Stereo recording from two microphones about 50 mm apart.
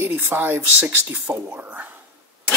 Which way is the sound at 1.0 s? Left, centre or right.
Right.